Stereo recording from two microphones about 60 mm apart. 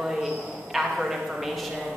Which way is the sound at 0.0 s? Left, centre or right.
Centre.